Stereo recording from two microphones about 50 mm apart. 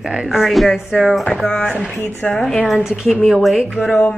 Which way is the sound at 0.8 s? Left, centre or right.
Centre.